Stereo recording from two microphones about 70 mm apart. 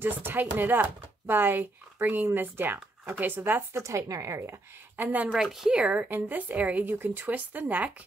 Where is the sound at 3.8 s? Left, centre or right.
Right.